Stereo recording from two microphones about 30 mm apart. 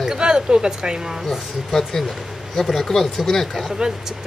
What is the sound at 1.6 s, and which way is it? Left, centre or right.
Speech, centre.